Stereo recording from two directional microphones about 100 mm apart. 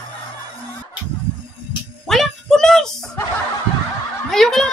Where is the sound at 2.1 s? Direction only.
5° left (ahead or behind).